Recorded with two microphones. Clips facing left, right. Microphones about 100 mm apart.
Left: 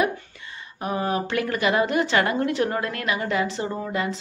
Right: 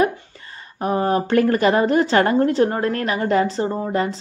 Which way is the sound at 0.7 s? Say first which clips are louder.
Right 6 dB; 40° right (ahead or behind).